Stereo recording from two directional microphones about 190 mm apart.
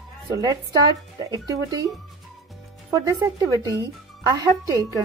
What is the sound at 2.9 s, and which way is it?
Speech, 15° right (ahead or behind).